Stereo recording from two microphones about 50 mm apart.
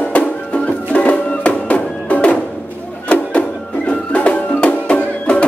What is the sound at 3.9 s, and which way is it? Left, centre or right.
Music, left.